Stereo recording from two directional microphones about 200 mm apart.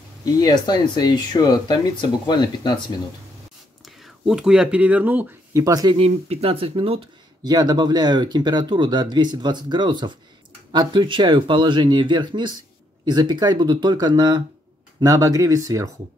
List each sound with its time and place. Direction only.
0.2 s speech: 20° left (ahead or behind)
3.8 s speech: centre (ahead or behind); by 5.9 s 20° right (ahead or behind)
5.9 s speech: 30° right (ahead or behind); by 15.9 s 15° right (ahead or behind)